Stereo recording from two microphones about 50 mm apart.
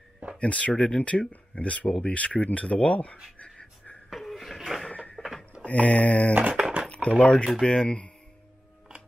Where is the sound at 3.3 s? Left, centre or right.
Left.